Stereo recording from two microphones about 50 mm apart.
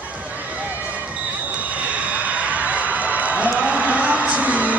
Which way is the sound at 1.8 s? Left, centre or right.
Right.